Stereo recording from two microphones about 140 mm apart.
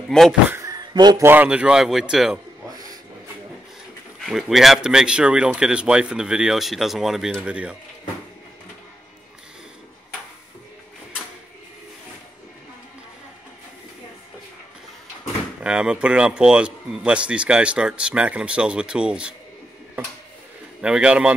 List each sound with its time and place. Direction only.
0.1 s speech: centre (ahead or behind)
0.5 s a sound: 25° right (ahead or behind)
1.2 s speech: 15° right (ahead or behind)
4.3 s speech: centre (ahead or behind)
15.6 s speech: 5° right (ahead or behind)
20.8 s speech: 5° right (ahead or behind)